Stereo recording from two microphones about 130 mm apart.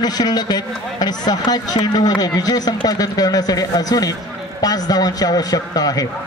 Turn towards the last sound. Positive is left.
turn(degrees=30)  # may be behind; listen again after turning